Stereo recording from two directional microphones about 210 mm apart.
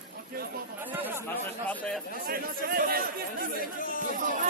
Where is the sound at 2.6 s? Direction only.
45° right (ahead or behind).